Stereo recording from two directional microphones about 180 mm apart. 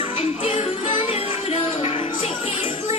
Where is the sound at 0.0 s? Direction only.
30° left (ahead or behind).